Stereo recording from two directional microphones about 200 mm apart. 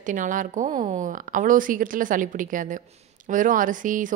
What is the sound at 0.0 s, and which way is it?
Speech, 40° right (ahead or behind).